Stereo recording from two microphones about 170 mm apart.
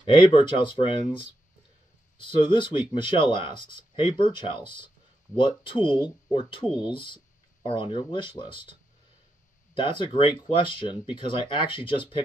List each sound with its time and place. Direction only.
0.0 s speech: 30° left (ahead or behind)
9.8 s speech: 30° left (ahead or behind)